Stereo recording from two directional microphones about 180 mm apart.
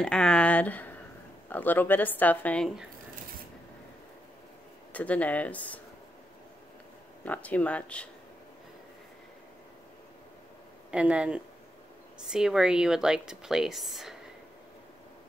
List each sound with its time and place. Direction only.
0.0 s speech: 5° left (ahead or behind)
4.9 s speech: 10° left (ahead or behind)
7.2 s speech: 10° left (ahead or behind)
10.9 s a woman's voice: 5° right (ahead or behind)